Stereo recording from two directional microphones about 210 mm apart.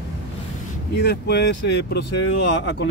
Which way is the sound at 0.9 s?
50° left (ahead or behind).